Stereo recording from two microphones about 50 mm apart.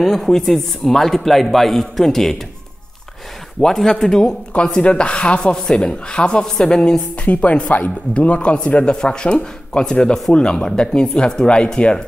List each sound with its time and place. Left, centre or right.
0.0 s a man's voice: centre
3.6 s speech: centre
7.2 s speech: left